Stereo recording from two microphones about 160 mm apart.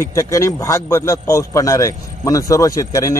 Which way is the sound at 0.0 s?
20° left (ahead or behind).